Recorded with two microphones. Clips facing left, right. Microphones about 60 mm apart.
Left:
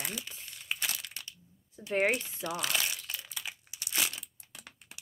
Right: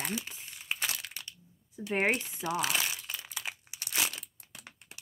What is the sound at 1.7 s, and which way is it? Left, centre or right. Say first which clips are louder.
Speech: even; centre.